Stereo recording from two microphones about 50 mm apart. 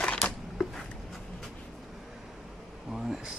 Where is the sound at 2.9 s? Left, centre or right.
Centre.